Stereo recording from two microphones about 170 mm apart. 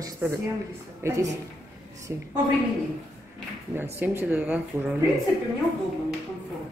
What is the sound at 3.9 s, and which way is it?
A woman's voice, 10° right (ahead or behind).